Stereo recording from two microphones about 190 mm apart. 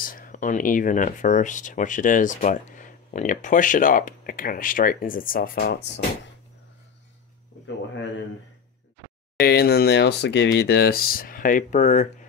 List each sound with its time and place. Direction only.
0.0 s speech: 45° left (ahead or behind)
9.4 s speech: 55° left (ahead or behind); by 12.1 s 40° left (ahead or behind)